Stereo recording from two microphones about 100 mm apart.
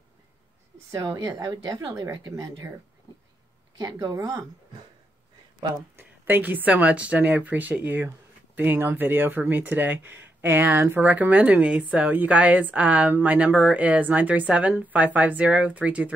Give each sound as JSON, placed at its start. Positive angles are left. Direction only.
{"t": 0.9, "sound": "speech", "side_deg": -40}
{"t": 3.7, "sound": "speech", "side_deg": -40}
{"t": 5.9, "sound": "speech", "side_deg": -20}